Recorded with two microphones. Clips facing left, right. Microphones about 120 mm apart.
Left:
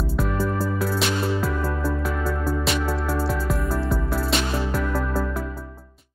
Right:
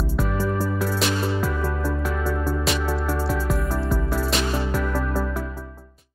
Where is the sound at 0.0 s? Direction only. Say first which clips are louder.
Even; 5° right (ahead or behind).